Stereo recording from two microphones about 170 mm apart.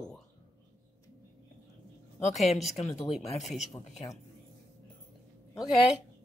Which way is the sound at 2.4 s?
40° left (ahead or behind).